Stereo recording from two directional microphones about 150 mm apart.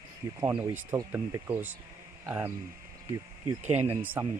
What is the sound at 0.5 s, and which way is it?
Speech, 10° right (ahead or behind).